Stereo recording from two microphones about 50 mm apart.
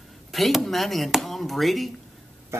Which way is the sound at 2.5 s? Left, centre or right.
Right.